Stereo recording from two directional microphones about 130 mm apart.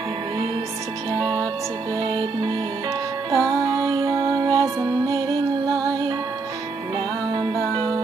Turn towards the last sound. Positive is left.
turn(degrees=-30)  # may be behind; listen again after turning